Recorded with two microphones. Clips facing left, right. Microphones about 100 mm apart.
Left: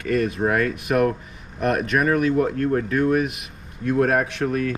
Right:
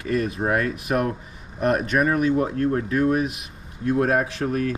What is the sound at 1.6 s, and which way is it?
Speech, 35° right (ahead or behind).